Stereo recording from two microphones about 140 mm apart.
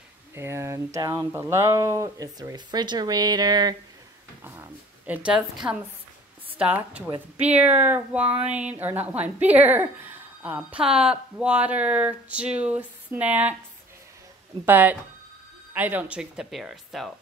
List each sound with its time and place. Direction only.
0.3 s speech: 20° right (ahead or behind)
4.4 s a woman's voice: 15° right (ahead or behind)
14.7 s a woman's voice: 15° right (ahead or behind)